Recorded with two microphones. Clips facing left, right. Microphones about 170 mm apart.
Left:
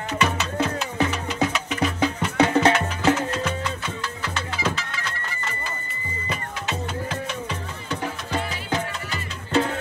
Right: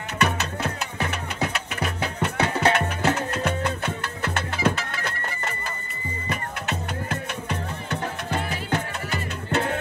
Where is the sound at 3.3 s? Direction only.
55° right (ahead or behind).